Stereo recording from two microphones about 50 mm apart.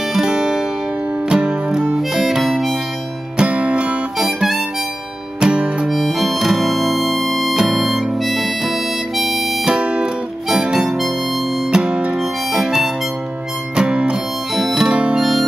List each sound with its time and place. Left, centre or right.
0.1 s music: centre
2.0 s music: centre
3.3 s music: right
4.4 s harmonica: centre
5.4 s music: centre
5.9 s harmonica: centre
9.7 s music: centre
10.5 s harmonica: centre
13.7 s music: centre
15.1 s music: centre